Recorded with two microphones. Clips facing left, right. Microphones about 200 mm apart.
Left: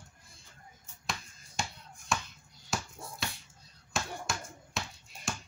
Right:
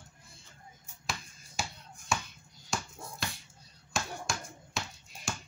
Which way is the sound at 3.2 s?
Centre (ahead or behind).